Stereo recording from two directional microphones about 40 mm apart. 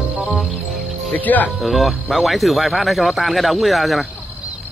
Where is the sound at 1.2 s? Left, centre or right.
Left.